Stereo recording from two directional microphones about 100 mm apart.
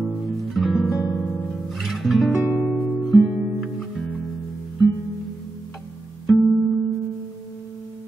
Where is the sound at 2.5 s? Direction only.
25° left (ahead or behind).